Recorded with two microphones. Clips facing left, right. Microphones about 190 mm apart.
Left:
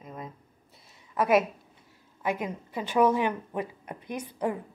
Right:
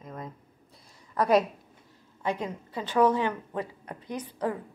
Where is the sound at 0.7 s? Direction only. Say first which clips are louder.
Even; 5° left (ahead or behind).